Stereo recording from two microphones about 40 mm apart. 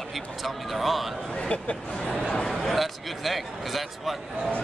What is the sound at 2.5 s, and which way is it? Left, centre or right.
Speech, centre.